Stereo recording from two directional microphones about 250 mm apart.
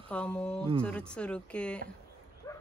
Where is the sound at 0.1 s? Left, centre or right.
Centre.